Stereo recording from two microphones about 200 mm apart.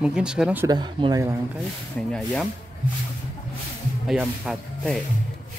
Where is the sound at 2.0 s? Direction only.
5° left (ahead or behind).